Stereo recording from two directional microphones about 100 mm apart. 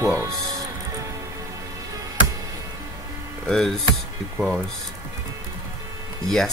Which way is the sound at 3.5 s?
Centre (ahead or behind).